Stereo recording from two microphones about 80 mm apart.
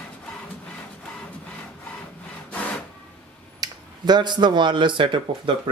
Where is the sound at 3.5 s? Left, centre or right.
Right.